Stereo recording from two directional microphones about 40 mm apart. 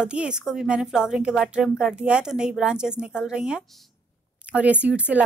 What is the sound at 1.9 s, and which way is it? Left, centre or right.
A woman's voice, right.